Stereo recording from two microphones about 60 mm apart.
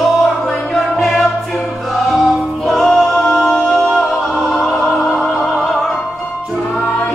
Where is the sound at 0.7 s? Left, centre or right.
Centre.